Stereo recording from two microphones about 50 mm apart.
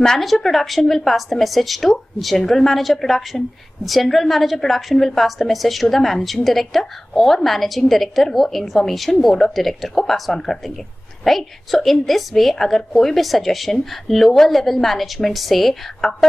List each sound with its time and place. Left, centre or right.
0.0 s speech: centre